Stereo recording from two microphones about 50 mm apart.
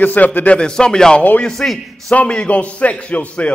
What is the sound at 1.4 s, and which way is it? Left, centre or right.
Speech, centre.